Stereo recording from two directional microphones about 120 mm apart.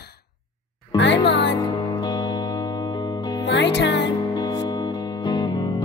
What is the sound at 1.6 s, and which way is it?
Music, 30° left (ahead or behind).